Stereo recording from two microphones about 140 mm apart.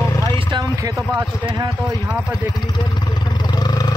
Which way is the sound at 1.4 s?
35° right (ahead or behind).